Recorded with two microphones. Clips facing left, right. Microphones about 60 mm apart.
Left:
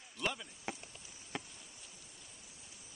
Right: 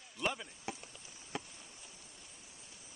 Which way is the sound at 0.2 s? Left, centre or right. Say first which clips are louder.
Right 2 dB; centre.